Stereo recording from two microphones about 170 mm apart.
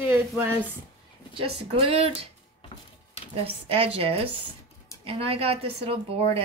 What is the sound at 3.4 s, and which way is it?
A woman's voice, 35° right (ahead or behind).